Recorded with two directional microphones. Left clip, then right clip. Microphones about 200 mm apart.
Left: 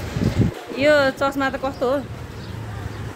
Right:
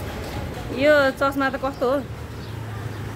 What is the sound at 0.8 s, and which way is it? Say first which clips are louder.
Speech: left 1 dB; 5° left (ahead or behind).